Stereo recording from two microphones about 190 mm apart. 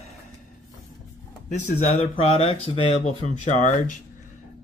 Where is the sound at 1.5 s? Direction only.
30° left (ahead or behind).